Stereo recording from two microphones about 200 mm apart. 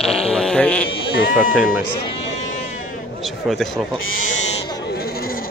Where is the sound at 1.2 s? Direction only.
45° left (ahead or behind).